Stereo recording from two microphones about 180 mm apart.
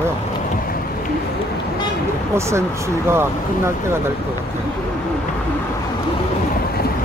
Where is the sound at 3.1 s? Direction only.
15° right (ahead or behind).